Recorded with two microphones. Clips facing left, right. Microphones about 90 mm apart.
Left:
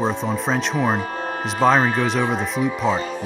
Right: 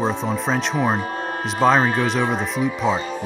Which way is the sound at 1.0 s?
35° right (ahead or behind).